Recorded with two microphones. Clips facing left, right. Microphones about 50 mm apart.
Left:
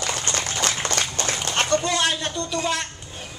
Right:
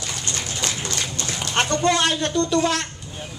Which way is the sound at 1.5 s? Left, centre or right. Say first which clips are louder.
Right 3 dB; right.